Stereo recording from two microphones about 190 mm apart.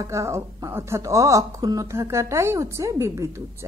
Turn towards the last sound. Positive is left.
turn(degrees=-15)  # may be behind; listen again after turning